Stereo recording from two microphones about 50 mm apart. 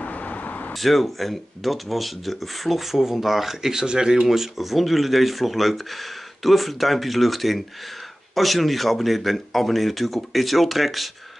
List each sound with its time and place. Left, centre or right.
0.0 s vehicle: left
0.7 s speech: centre